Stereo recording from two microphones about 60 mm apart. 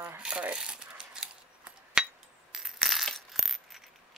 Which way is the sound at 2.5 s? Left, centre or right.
Centre.